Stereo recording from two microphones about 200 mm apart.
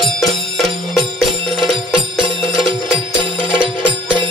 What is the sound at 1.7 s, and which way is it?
Music, 25° right (ahead or behind).